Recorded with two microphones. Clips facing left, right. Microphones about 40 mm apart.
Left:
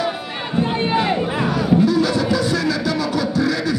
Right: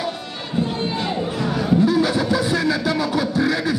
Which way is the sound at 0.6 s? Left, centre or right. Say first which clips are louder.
Left 4 dB; left.